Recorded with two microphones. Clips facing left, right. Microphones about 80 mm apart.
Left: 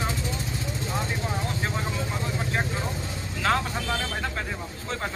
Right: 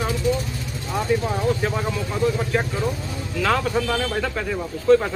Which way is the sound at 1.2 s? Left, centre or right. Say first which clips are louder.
Right 8 dB; centre.